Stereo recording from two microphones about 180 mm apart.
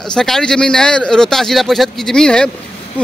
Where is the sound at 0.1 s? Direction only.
5° left (ahead or behind).